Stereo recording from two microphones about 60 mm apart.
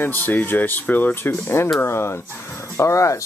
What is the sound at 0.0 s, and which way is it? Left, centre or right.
Speech, left.